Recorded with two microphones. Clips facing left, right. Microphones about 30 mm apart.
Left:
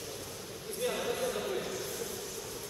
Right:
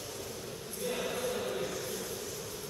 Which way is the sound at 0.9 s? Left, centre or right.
Centre.